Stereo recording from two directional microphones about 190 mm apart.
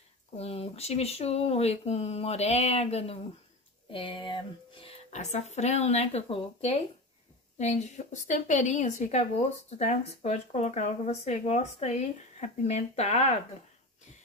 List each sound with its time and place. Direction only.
0.4 s speech: 30° left (ahead or behind)